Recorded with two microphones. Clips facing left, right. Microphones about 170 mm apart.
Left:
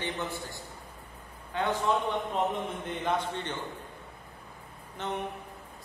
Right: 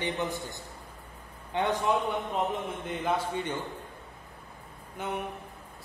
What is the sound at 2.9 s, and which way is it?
Speech, 5° right (ahead or behind).